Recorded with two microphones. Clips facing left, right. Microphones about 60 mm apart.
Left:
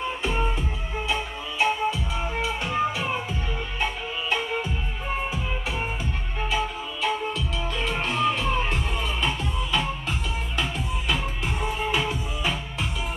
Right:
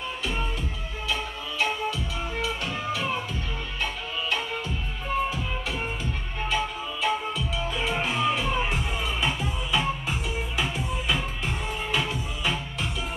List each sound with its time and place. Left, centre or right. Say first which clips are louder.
0.2 s music: left 4 dB; left
6.5 s music: even; centre